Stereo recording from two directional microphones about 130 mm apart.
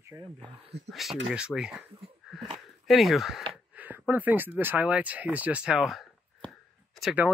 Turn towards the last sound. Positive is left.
turn(degrees=0)  # may be behind; listen again after turning